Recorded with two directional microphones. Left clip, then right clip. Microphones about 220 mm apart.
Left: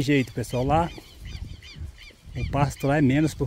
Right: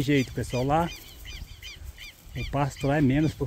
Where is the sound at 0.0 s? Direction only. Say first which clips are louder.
Left 2 dB; 15° left (ahead or behind).